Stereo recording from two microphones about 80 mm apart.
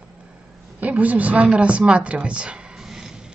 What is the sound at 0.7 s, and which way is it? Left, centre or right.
A woman's voice, centre.